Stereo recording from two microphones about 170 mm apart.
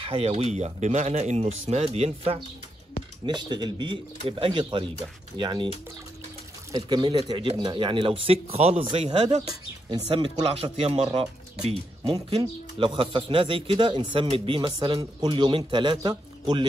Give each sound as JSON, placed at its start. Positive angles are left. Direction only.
{"t": 0.0, "sound": "speech", "side_deg": -35}
{"t": 3.3, "sound": "a man's voice", "side_deg": -25}
{"t": 6.7, "sound": "a man's voice", "side_deg": -25}
{"t": 9.5, "sound": "speech", "side_deg": -25}
{"t": 10.6, "sound": "speech", "side_deg": -35}
{"t": 12.1, "sound": "a man's voice", "side_deg": -30}